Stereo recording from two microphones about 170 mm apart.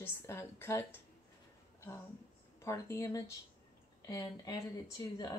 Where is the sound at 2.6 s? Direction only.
15° left (ahead or behind).